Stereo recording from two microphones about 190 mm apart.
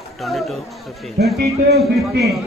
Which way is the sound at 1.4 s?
60° right (ahead or behind).